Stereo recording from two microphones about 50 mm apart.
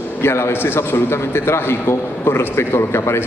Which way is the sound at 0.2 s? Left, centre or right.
Left.